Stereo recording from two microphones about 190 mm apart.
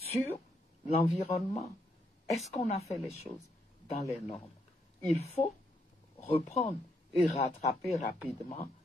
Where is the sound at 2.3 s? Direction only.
35° left (ahead or behind).